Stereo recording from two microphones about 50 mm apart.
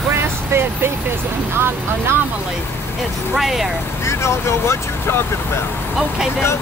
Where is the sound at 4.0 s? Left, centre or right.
Left.